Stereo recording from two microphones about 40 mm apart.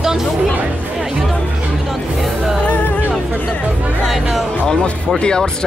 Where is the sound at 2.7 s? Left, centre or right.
Left.